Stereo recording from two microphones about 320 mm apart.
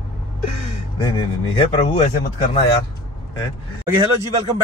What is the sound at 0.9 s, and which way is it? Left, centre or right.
Speech, centre.